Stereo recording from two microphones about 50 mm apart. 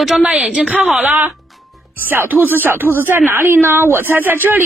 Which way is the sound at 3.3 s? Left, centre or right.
Right.